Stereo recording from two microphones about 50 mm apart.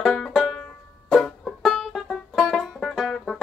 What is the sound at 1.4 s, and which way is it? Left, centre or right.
Music, centre.